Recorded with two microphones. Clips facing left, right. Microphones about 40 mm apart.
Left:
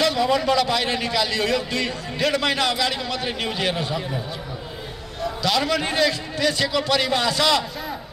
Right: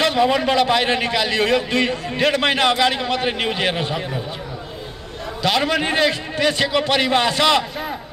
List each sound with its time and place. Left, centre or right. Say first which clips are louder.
0.0 s a man's voice: right 3 dB; right
5.4 s a man's voice: right 3 dB; right